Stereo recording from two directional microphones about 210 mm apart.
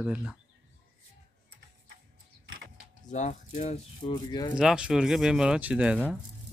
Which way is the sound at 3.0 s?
35° left (ahead or behind).